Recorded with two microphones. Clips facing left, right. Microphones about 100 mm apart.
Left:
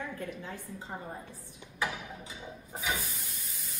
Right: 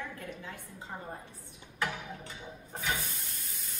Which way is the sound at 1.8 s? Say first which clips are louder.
Even; 10° left (ahead or behind).